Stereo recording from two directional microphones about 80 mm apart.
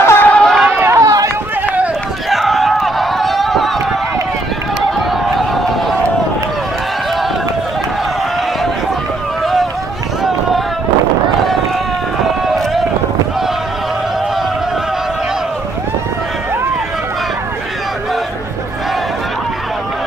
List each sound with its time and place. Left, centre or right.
0.0 s chatter: left
0.3 s chatter: centre
0.7 s run: right
1.0 s run: right
2.2 s a sound: centre
5.3 s a sound: centre